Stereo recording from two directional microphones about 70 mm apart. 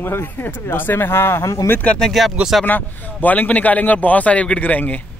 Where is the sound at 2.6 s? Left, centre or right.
Left.